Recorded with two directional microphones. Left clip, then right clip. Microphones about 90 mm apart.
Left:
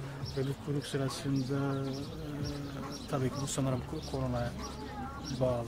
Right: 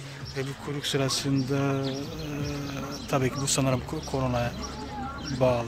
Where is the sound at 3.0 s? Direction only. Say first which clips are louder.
Right 9 dB; 15° right (ahead or behind).